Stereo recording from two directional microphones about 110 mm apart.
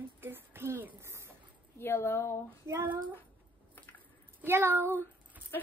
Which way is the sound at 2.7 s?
20° right (ahead or behind).